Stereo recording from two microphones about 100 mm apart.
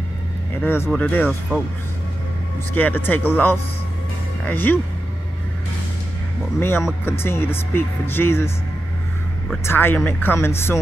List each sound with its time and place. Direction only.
0.6 s speech: 25° left (ahead or behind)
2.7 s speech: 20° left (ahead or behind)
6.6 s speech: 25° left (ahead or behind)
9.7 s speech: 20° left (ahead or behind)